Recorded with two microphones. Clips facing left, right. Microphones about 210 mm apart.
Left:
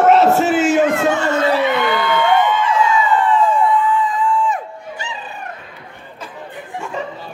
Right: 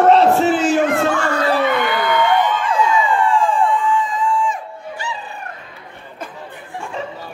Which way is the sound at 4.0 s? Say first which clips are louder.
Left 1 dB; 60° left (ahead or behind).